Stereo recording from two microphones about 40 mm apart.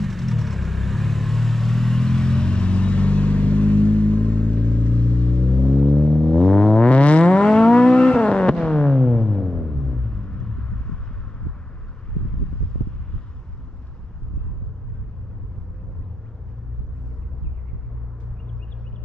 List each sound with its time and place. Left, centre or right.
0.0 s vehicle: centre; by 11.0 s left